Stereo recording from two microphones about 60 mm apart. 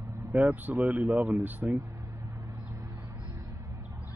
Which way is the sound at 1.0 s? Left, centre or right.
Centre.